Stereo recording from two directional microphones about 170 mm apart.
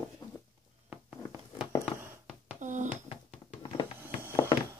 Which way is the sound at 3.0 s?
35° left (ahead or behind).